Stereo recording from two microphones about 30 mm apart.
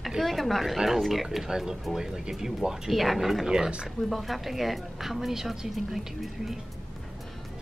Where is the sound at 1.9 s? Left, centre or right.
Centre.